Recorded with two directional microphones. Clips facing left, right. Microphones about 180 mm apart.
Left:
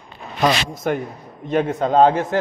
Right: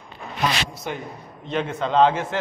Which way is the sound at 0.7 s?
50° left (ahead or behind).